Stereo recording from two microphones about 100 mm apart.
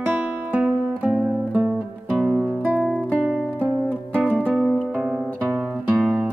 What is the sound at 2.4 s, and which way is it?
Music, 15° right (ahead or behind).